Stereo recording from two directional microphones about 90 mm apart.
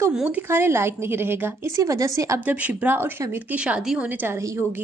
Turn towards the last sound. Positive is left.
turn(degrees=-10)  # may be behind; listen again after turning